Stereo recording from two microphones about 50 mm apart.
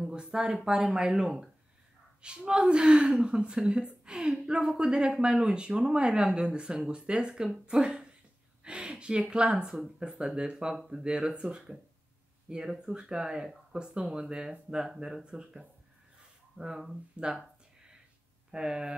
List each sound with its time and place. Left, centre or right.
0.1 s a woman's voice: centre
18.5 s a woman's voice: centre